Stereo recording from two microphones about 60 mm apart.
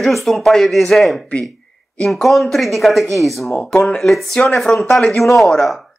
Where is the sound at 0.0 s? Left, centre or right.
Centre.